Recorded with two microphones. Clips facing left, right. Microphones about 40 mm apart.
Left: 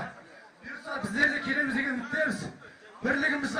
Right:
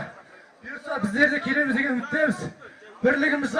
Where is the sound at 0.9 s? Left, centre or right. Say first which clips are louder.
Right 5 dB; right.